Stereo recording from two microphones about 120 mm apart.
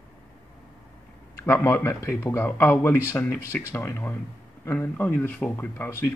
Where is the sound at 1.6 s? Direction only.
20° left (ahead or behind).